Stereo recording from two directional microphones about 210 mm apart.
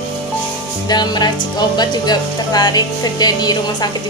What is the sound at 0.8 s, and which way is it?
Speech, 20° left (ahead or behind).